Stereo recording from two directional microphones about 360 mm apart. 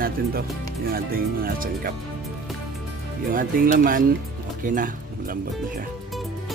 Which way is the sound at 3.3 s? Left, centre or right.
Right.